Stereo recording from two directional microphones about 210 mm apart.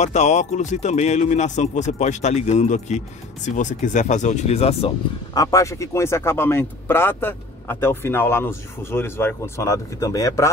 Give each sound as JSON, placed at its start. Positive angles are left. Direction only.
{"t": 0.0, "sound": "speech", "side_deg": 35}
{"t": 5.3, "sound": "speech", "side_deg": 15}